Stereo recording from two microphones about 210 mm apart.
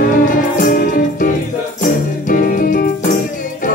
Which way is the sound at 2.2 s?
40° left (ahead or behind).